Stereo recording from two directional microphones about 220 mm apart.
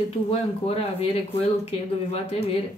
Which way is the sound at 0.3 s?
25° left (ahead or behind).